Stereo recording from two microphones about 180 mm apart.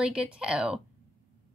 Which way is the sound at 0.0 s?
5° right (ahead or behind).